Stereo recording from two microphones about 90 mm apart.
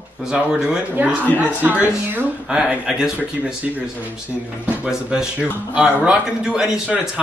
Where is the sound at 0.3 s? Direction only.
5° right (ahead or behind).